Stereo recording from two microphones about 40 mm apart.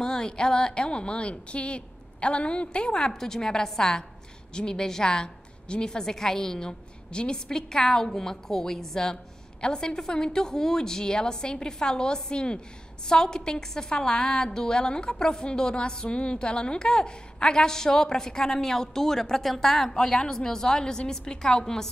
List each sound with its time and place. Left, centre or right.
0.0 s a woman's voice: centre
3.1 s a woman's voice: centre